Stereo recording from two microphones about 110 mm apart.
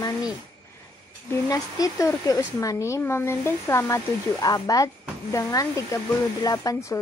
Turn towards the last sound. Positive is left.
turn(degrees=30)  # may be behind; listen again after turning